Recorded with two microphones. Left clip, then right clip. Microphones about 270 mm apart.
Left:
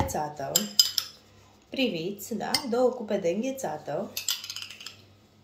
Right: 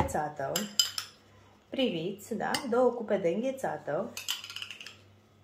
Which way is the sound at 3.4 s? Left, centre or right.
Right.